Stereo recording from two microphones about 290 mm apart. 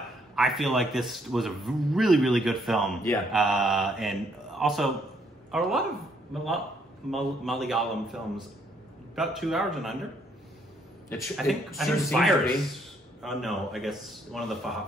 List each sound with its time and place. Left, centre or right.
0.4 s a man's voice: centre
11.1 s a man's voice: centre